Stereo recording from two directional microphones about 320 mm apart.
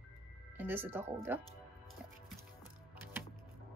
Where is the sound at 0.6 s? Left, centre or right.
Centre.